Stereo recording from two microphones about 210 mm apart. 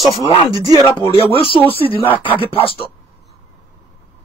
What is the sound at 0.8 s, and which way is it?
Speech, 25° left (ahead or behind).